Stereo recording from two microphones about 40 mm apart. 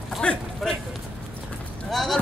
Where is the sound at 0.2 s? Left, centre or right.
Centre.